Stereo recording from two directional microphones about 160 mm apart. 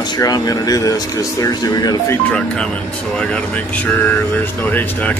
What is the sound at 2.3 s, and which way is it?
Speech, 5° left (ahead or behind).